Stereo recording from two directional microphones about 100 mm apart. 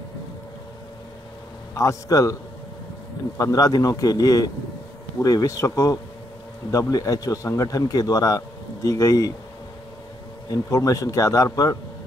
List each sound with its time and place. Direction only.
1.8 s a man's voice: 35° left (ahead or behind)
3.3 s a man's voice: 35° left (ahead or behind)
10.5 s a man's voice: 35° left (ahead or behind)